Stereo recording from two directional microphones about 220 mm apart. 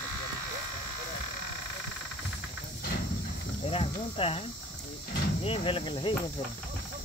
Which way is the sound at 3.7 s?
25° left (ahead or behind).